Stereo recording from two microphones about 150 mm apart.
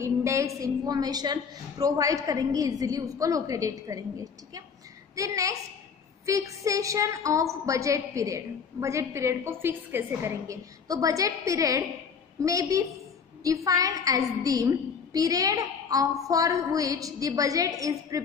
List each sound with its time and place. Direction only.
0.0 s a woman's voice: 20° right (ahead or behind)